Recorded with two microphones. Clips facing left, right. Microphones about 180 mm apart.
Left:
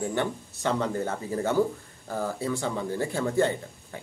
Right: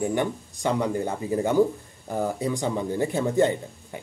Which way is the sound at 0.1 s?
15° right (ahead or behind).